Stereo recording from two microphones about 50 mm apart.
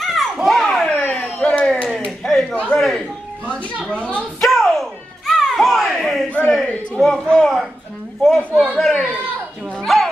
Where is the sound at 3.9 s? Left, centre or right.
Left.